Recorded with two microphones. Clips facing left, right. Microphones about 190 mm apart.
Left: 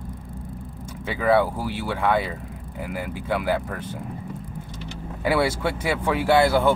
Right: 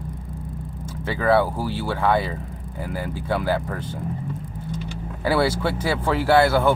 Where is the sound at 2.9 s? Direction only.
Centre (ahead or behind).